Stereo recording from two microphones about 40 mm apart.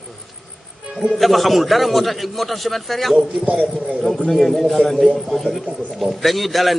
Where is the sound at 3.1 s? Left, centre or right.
Right.